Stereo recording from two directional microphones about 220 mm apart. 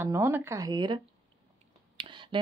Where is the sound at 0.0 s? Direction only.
10° right (ahead or behind).